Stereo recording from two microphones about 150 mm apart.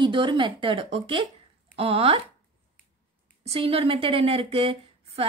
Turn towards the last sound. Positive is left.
turn(degrees=-40)  # may be behind; listen again after turning